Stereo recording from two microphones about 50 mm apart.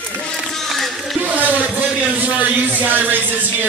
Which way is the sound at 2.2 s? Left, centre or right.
Right.